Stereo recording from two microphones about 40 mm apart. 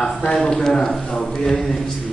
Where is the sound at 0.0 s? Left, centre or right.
Centre.